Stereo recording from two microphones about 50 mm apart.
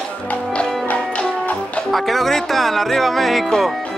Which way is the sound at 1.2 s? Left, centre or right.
Left.